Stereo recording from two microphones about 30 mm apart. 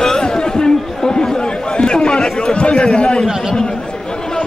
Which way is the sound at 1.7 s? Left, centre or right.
Left.